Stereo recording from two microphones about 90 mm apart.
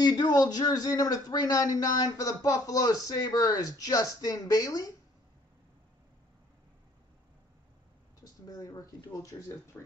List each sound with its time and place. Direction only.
0.0 s speech: 50° left (ahead or behind)
8.2 s speech: 45° left (ahead or behind)
9.7 s speech: 15° left (ahead or behind)